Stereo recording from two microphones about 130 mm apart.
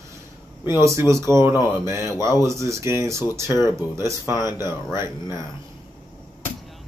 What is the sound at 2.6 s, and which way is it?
Speech, 20° right (ahead or behind).